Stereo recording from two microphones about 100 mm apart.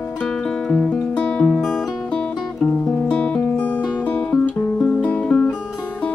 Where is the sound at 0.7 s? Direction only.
10° left (ahead or behind).